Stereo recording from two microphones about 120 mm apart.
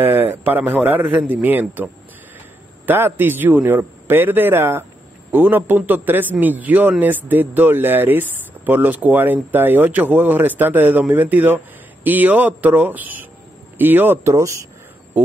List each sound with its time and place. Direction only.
0.0 s speech: 15° right (ahead or behind)
2.9 s speech: 15° right (ahead or behind)